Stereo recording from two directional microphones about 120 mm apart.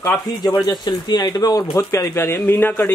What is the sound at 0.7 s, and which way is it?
A man's voice, 40° left (ahead or behind).